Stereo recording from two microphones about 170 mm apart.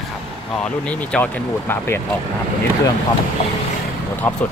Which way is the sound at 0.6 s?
5° left (ahead or behind).